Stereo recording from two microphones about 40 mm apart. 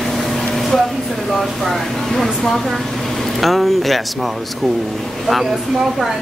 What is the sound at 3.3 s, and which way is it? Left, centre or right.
Speech, centre.